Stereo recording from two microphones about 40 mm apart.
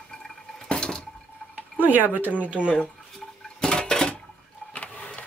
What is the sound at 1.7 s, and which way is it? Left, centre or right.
Speech, right.